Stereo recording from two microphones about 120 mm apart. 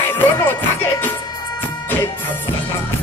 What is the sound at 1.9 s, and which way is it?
Music, 15° left (ahead or behind).